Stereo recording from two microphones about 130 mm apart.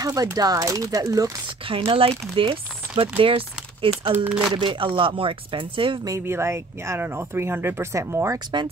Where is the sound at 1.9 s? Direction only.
45° right (ahead or behind).